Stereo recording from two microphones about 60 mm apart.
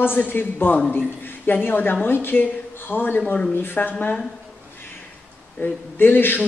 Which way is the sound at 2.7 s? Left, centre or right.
Left.